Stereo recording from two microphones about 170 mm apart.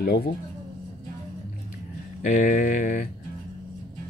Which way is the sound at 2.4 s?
60° left (ahead or behind).